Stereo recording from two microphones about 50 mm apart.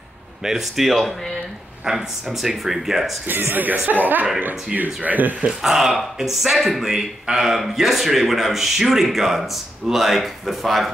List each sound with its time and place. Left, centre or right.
0.4 s speech: centre
1.9 s speech: centre
3.3 s speech: right
5.4 s speech: centre